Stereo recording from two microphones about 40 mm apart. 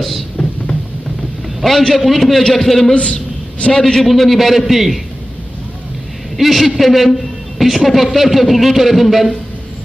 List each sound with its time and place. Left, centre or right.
1.6 s a man's voice: centre
2.9 s a sound: left
3.7 s a man's voice: centre
6.3 s a man's voice: centre